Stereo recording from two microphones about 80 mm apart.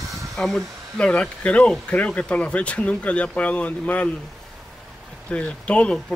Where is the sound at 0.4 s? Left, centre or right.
Centre.